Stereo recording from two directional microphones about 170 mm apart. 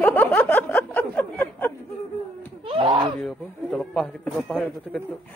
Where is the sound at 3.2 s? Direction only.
5° left (ahead or behind).